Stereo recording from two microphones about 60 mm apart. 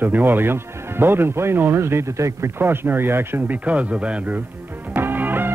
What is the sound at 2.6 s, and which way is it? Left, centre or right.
Speech, right.